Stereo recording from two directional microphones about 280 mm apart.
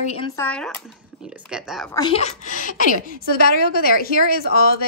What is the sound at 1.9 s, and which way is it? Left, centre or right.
A woman's voice, centre.